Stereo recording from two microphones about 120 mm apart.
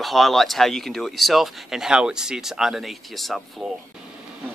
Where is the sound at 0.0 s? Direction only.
Centre (ahead or behind).